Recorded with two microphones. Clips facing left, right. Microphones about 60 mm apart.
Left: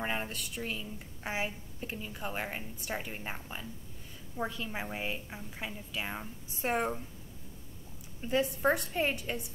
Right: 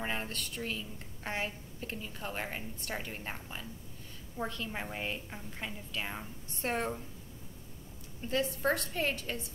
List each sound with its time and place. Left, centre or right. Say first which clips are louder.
0.0 s a woman's voice: left 1 dB; centre
8.2 s a woman's voice: left 3 dB; centre